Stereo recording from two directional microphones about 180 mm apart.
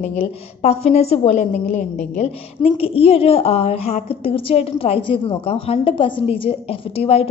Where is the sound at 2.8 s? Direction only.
30° left (ahead or behind).